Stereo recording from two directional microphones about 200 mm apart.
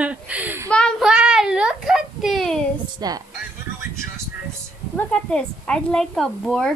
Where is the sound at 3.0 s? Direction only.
20° right (ahead or behind).